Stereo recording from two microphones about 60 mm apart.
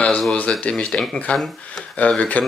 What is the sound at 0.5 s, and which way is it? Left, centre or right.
Speech, centre.